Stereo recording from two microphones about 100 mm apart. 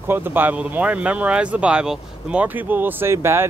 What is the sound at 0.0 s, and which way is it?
Speech, 20° right (ahead or behind).